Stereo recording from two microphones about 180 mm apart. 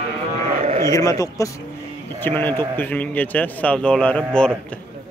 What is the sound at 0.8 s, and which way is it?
A man's voice, 20° left (ahead or behind).